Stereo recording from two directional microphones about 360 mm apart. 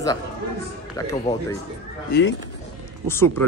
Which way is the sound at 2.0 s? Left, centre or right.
Left.